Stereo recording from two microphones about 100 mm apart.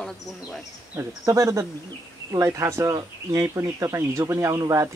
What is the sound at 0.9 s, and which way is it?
Speech, 30° right (ahead or behind).